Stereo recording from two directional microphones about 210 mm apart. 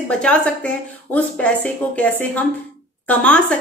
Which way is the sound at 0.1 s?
5° left (ahead or behind).